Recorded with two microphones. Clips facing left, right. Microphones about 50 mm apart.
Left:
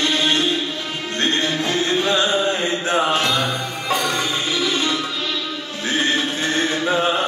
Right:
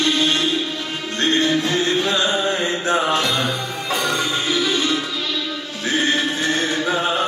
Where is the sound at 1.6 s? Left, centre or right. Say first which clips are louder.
Right 1 dB; left.